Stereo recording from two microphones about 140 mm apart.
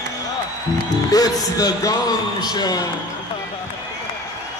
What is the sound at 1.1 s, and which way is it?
Speech, 25° left (ahead or behind).